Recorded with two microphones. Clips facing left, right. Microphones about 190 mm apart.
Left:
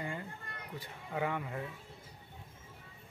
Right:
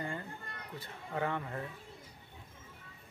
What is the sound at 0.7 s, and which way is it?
Speech, 10° left (ahead or behind).